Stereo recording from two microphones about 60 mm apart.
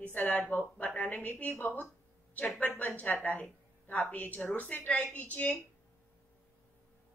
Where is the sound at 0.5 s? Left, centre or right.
Left.